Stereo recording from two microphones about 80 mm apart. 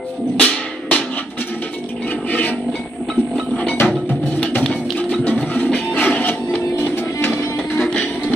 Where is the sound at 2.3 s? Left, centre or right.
Centre.